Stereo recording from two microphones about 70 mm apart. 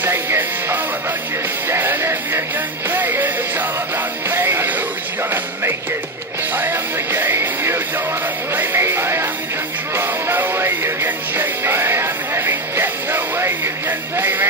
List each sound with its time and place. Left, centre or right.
0.0 s music: right